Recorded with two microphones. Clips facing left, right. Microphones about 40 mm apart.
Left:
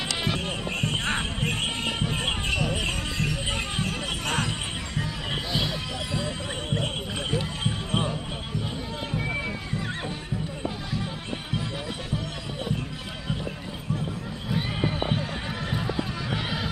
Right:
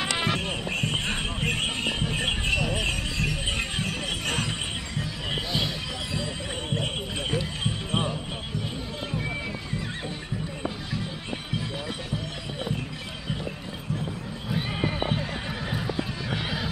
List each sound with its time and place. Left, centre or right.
0.0 s music: right
0.3 s music: right
6.7 s a sound: centre
7.6 s basketball bounce: centre
14.5 s neigh: centre
15.7 s horse: centre